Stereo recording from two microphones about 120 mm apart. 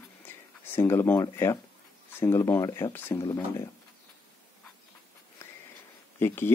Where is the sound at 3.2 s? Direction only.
35° left (ahead or behind).